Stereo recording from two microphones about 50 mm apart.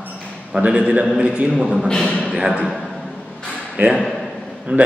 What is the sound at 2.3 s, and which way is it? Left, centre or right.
Speech, centre.